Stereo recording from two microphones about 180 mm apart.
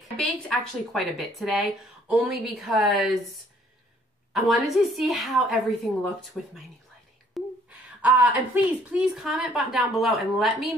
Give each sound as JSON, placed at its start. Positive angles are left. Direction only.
{"t": 0.2, "sound": "speech", "side_deg": 0}
{"t": 7.3, "sound": "whispering", "side_deg": 0}
{"t": 8.0, "sound": "speech", "side_deg": -10}